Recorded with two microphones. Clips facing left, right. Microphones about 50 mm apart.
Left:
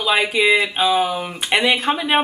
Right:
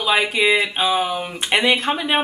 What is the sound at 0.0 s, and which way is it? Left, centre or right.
Speech, centre.